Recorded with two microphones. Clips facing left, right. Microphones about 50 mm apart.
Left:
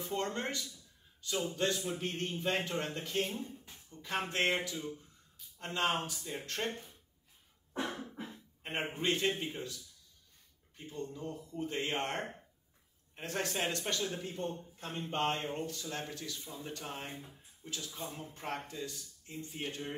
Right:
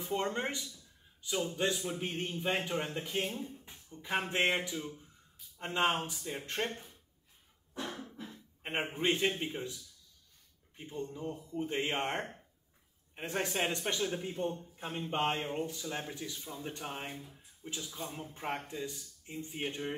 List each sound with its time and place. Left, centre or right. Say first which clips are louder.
0.0 s speech: right 2 dB; centre
0.7 s a sound: right 1 dB; centre
1.5 s speech: right 1 dB; centre
7.7 s a sound: left 3 dB; left
8.0 s a sound: left 1 dB; centre
8.9 s speech: right 1 dB; centre
10.8 s speech: right 2 dB; centre
12.2 s speech: even; centre
13.1 s speech: right 2 dB; centre
16.3 s speech: right 2 dB; centre
16.6 s speech: right 2 dB; centre